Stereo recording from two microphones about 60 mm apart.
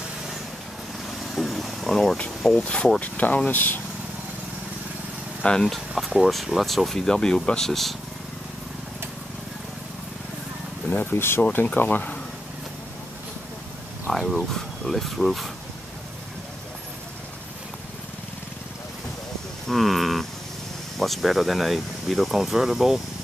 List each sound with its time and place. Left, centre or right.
1.3 s vehicle: centre
2.7 s speech: centre
3.0 s speech: left
5.4 s speech: centre
5.7 s speech: centre
10.9 s speech: left
14.1 s speech: centre
19.7 s a sound: centre
21.0 s speech: centre